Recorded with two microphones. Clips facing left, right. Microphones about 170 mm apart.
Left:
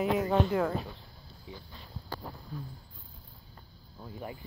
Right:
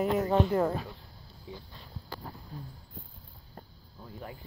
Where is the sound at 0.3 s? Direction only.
5° right (ahead or behind).